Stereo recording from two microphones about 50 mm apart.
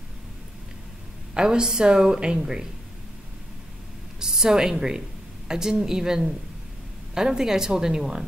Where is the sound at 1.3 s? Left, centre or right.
Centre.